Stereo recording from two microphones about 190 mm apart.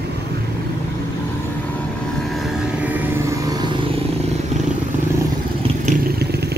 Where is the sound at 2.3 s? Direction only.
5° right (ahead or behind); by 3.8 s 20° right (ahead or behind).